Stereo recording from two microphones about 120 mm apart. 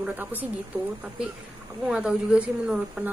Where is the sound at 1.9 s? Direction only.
10° right (ahead or behind).